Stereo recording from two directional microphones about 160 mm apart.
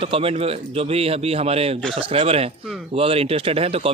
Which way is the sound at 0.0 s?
35° right (ahead or behind).